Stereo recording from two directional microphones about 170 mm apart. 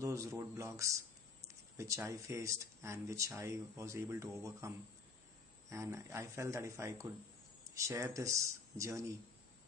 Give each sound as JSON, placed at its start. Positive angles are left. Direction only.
{"t": 0.0, "sound": "speech", "side_deg": -20}